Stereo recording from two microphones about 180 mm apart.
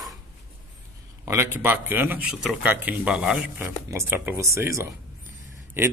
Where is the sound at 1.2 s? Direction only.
15° right (ahead or behind).